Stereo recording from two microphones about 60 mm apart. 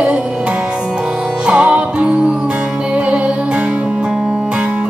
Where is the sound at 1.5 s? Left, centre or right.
Centre.